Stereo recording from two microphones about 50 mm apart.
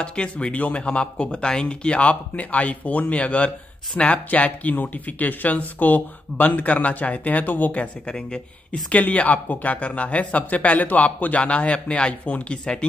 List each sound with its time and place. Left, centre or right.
0.0 s speech: centre; by 7.8 s left
7.8 s speech: centre
8.9 s speech: left